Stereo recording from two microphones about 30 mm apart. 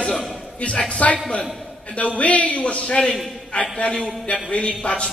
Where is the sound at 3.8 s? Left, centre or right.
Left.